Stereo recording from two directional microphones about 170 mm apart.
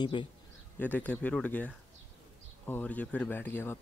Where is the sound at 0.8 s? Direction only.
10° left (ahead or behind).